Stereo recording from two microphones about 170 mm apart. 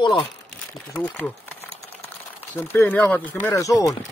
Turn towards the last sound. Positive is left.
turn(degrees=20)  # may be behind; listen again after turning